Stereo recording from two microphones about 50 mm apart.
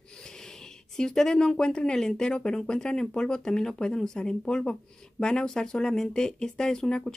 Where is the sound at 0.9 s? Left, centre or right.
Centre.